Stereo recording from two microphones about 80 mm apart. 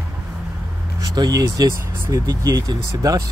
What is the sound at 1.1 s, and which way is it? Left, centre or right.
Speech, right.